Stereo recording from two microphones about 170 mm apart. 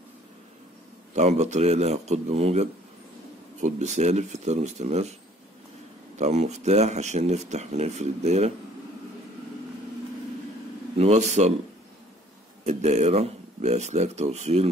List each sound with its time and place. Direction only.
1.1 s speech: 40° right (ahead or behind)
6.1 s speech: 40° right (ahead or behind)
11.0 s speech: 40° right (ahead or behind)
12.6 s speech: 40° right (ahead or behind)